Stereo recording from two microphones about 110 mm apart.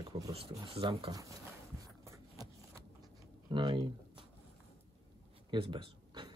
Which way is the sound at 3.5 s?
45° right (ahead or behind).